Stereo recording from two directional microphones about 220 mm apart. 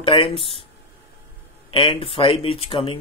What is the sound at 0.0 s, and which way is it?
Speech, 25° left (ahead or behind).